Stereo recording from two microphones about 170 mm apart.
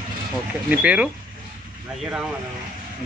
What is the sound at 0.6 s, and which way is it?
Speech, 10° right (ahead or behind).